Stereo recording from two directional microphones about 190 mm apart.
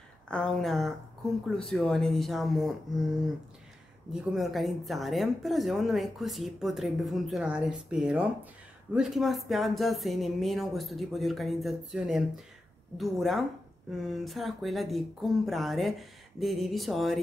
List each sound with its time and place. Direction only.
0.3 s speech: 5° left (ahead or behind)